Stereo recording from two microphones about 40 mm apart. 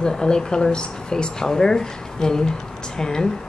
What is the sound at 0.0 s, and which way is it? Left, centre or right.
Speech, centre.